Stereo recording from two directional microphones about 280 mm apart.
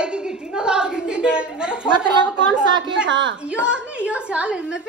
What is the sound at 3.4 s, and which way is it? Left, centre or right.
A woman's voice, centre.